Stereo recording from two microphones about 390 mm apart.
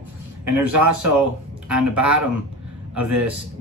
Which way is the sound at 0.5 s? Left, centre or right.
Right.